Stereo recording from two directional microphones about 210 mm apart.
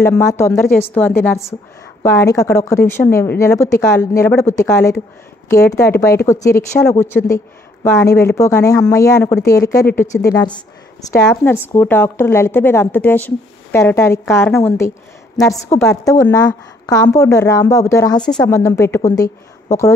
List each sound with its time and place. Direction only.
0.0 s a woman's voice: 10° left (ahead or behind)